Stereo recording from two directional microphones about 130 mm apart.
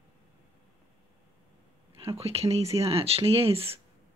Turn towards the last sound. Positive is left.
turn(degrees=-45)  # may be behind; listen again after turning